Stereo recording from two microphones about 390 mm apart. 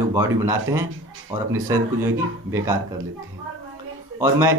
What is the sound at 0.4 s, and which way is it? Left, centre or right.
Speech, centre.